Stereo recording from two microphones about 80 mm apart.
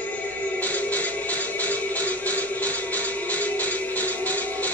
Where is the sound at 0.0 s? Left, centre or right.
Centre.